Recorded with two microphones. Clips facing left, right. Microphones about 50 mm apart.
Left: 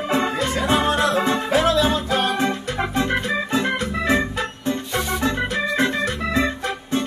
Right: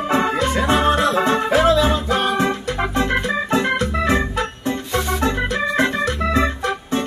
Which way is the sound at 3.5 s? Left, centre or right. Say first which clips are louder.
Right 5 dB; right.